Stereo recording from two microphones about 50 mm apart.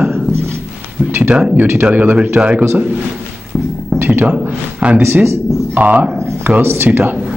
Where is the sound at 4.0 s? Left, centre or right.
Right.